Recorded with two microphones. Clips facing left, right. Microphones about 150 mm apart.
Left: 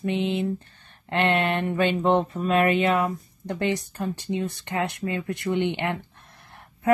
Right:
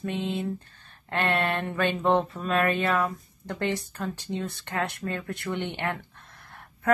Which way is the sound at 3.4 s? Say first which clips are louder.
Left 3 dB; 15° left (ahead or behind).